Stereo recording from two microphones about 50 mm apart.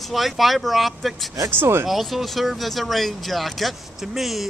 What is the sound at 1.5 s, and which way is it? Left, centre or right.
Speech, right.